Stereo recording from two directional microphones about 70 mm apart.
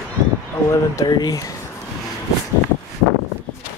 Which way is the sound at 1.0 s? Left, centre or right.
Left.